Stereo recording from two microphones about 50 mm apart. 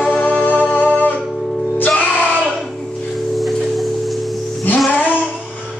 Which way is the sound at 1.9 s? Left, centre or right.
Left.